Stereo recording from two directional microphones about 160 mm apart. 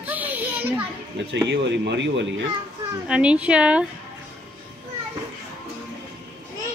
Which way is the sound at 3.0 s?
5° right (ahead or behind).